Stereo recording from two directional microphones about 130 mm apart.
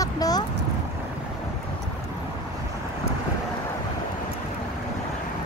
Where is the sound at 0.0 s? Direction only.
30° left (ahead or behind).